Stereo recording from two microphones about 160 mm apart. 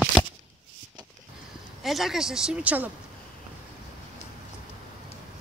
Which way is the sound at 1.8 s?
Centre (ahead or behind).